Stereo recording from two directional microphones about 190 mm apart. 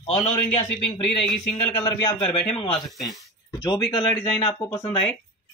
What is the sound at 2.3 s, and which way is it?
Speech, 5° left (ahead or behind).